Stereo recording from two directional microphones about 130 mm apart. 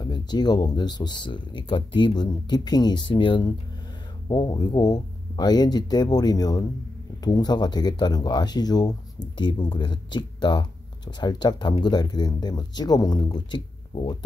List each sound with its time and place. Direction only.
0.0 s speech: 35° left (ahead or behind)